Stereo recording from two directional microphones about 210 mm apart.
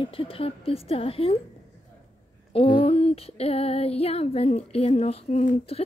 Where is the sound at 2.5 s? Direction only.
25° left (ahead or behind).